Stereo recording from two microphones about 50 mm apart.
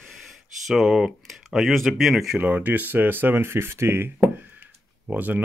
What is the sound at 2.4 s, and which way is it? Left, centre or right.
Speech, right.